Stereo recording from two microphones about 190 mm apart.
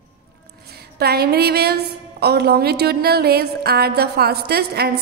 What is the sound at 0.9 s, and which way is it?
A woman's voice, 55° right (ahead or behind).